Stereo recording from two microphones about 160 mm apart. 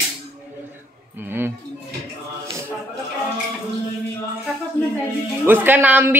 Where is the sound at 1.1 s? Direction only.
15° right (ahead or behind).